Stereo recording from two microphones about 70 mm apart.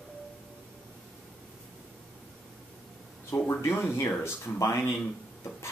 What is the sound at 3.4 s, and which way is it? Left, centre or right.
Speech, left.